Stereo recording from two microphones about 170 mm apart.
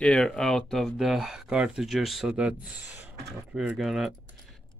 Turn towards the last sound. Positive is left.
turn(degrees=0)  # may be behind; listen again after turning